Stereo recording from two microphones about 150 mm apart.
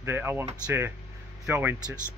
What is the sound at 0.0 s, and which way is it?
Speech, 15° right (ahead or behind).